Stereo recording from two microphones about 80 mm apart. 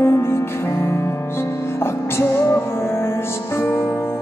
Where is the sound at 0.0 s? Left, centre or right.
Left.